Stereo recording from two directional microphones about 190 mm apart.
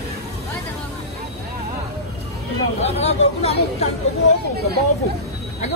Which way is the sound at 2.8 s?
35° left (ahead or behind).